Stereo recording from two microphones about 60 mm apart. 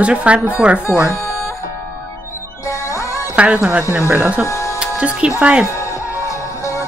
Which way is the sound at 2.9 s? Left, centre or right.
Left.